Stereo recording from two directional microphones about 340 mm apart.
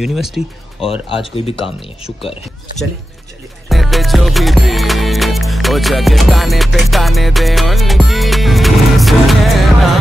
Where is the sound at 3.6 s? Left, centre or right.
Centre.